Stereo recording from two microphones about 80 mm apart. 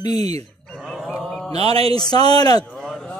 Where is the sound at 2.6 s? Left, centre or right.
Centre.